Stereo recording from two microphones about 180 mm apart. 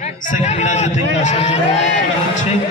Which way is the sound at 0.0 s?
40° left (ahead or behind).